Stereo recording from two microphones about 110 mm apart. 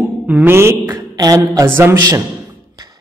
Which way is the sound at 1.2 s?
35° right (ahead or behind).